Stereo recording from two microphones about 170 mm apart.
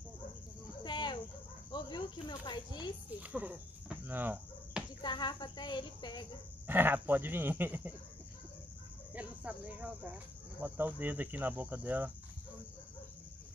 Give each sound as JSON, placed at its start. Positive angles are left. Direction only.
{"t": 0.8, "sound": "a sound", "side_deg": 25}
{"t": 1.7, "sound": "snake", "side_deg": 25}
{"t": 3.2, "sound": "a sound", "side_deg": -10}
{"t": 5.0, "sound": "speech", "side_deg": 25}
{"t": 6.7, "sound": "cricket", "side_deg": -10}
{"t": 9.1, "sound": "speech", "side_deg": -10}
{"t": 10.6, "sound": "cricket", "side_deg": -10}